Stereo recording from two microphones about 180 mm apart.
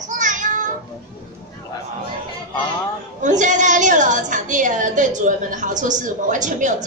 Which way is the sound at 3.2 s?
45° right (ahead or behind).